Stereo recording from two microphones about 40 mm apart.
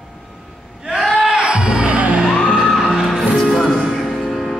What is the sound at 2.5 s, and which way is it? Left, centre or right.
Music, centre.